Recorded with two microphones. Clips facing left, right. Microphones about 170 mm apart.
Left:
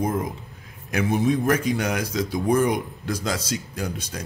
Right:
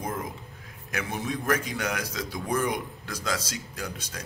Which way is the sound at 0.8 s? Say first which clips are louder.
Left 10 dB; 20° left (ahead or behind).